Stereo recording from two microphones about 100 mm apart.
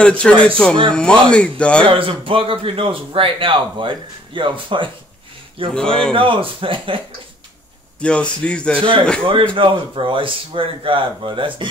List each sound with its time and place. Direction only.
0.0 s speech: 10° left (ahead or behind)
1.9 s a man's voice: 65° right (ahead or behind)
8.0 s speech: 10° left (ahead or behind)
9.2 s a man's voice: 55° right (ahead or behind)